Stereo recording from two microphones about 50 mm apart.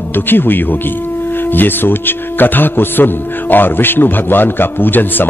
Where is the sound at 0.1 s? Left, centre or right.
Left.